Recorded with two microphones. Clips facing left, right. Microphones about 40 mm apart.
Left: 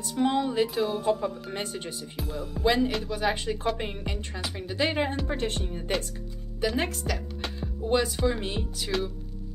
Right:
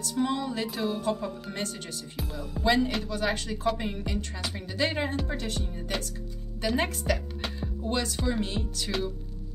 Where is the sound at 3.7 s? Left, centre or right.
Left.